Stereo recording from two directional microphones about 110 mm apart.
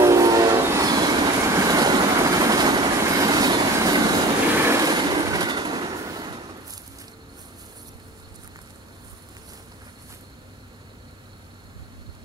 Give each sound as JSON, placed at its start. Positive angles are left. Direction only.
{"t": 0.0, "sound": "train", "side_deg": -30}
{"t": 3.0, "sound": "vehicle", "side_deg": -30}
{"t": 4.6, "sound": "train", "side_deg": -30}